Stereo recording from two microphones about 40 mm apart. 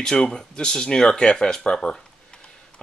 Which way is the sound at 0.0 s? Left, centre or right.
Centre.